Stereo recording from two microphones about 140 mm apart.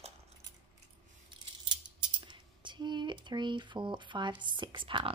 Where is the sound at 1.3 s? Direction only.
35° right (ahead or behind).